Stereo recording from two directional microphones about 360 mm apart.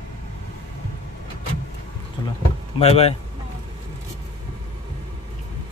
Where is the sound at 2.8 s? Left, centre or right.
Centre.